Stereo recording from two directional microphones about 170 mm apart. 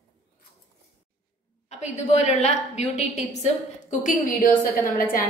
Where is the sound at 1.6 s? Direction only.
40° left (ahead or behind).